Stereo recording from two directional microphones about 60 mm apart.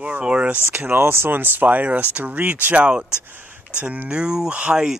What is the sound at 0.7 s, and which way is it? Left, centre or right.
Speech, right.